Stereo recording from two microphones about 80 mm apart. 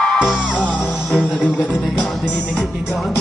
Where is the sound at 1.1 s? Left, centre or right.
Centre.